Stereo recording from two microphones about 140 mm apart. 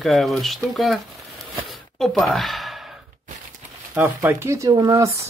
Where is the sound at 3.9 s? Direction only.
15° right (ahead or behind).